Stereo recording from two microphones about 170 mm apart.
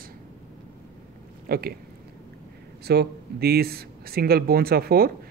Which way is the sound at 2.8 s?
70° right (ahead or behind).